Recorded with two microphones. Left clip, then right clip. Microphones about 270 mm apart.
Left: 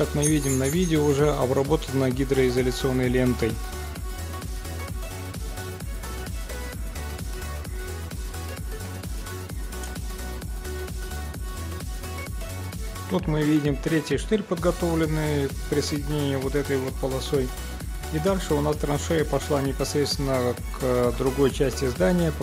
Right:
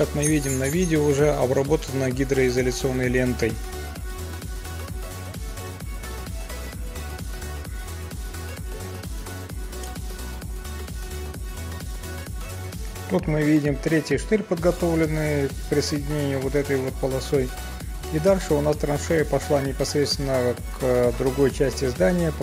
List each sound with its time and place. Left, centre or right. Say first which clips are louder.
0.2 s speech: even; centre
2.7 s speech: even; centre
3.0 s speech: right 1 dB; centre
13.1 s speech: right 2 dB; centre